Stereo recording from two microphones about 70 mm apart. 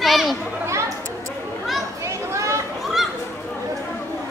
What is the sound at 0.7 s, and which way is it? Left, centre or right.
Chatter, right.